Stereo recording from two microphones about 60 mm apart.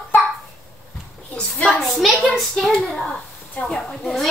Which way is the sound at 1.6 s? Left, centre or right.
Centre.